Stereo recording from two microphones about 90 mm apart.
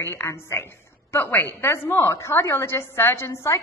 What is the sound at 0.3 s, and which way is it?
A woman's voice, 30° left (ahead or behind).